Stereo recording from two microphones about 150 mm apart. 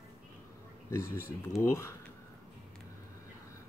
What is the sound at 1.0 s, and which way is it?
Speech, 70° right (ahead or behind).